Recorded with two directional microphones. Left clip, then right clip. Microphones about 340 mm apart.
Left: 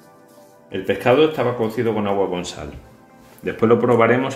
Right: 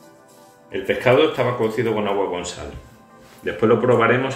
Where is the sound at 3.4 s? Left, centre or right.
Left.